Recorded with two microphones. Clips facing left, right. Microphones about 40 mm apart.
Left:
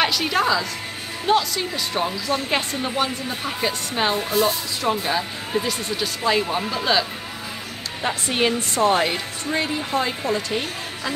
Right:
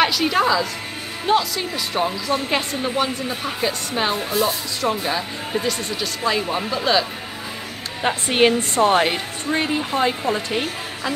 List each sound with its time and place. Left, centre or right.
0.0 s a woman's voice: centre
8.3 s speech: right